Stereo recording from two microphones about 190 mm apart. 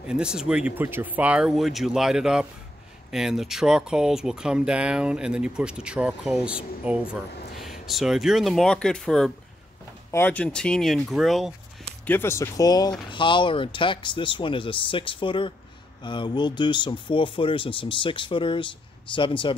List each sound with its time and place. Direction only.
0.0 s speech: 5° right (ahead or behind)
12.1 s speech: 15° left (ahead or behind)